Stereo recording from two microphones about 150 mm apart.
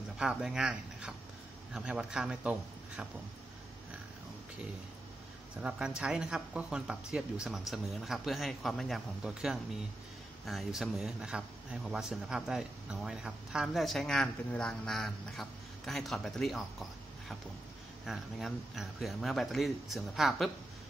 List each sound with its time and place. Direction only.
0.2 s speech: 5° right (ahead or behind)
5.6 s speech: 5° right (ahead or behind)
18.0 s speech: centre (ahead or behind)